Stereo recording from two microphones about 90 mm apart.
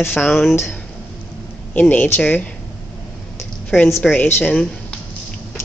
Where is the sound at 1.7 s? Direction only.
20° left (ahead or behind).